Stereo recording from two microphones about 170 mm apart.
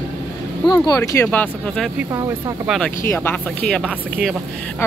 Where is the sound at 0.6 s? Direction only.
20° left (ahead or behind).